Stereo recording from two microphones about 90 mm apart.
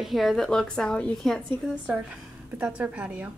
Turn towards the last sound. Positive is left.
turn(degrees=-15)  # may be behind; listen again after turning